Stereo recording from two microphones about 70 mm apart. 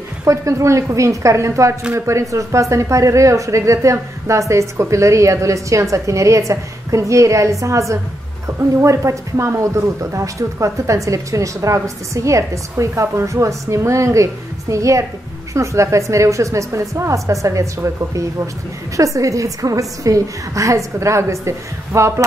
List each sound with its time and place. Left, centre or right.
0.2 s speech: right